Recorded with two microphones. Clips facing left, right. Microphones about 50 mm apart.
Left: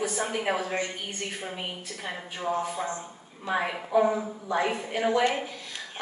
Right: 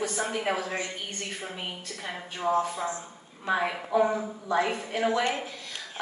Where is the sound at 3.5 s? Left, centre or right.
Centre.